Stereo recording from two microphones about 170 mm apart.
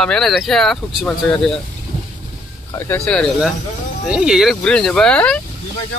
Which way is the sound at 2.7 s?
15° left (ahead or behind).